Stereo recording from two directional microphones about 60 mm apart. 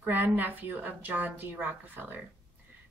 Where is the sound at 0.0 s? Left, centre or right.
Right.